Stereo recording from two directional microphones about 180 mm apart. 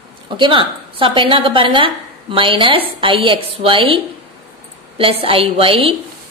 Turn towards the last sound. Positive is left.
turn(degrees=-30)  # may be behind; listen again after turning